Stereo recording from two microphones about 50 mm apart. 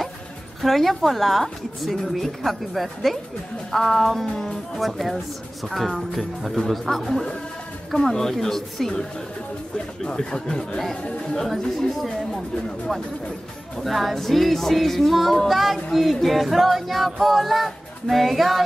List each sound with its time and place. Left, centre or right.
0.6 s music: centre
8.0 s speech: centre
10.0 s speech: centre
11.3 s music: centre
13.7 s music: centre